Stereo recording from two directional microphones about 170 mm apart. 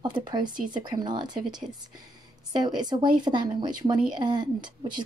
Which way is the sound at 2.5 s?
25° right (ahead or behind).